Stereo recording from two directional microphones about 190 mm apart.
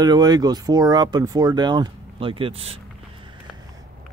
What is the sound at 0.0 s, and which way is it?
Speech, 20° right (ahead or behind).